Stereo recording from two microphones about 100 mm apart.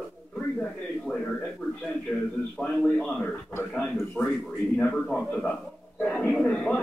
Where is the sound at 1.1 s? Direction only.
25° left (ahead or behind).